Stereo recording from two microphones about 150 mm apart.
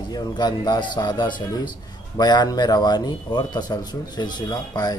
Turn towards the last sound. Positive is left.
turn(degrees=25)  # may be behind; listen again after turning